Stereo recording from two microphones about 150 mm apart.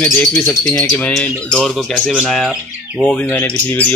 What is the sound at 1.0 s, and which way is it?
Bird, 5° left (ahead or behind).